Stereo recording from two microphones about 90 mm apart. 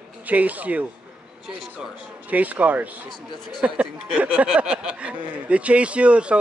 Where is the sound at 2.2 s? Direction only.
15° right (ahead or behind).